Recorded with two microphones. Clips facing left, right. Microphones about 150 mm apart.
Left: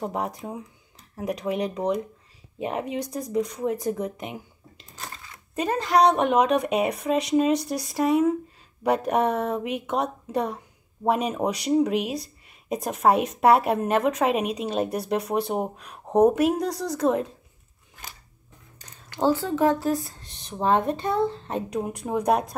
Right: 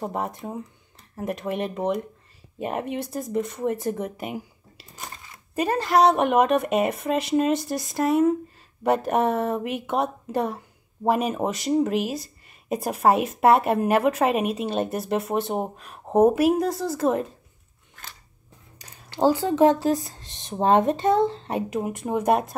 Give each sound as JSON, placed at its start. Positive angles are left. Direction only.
{"t": 0.0, "sound": "speech", "side_deg": 0}
{"t": 19.2, "sound": "a woman's voice", "side_deg": -15}
{"t": 21.5, "sound": "speech", "side_deg": -5}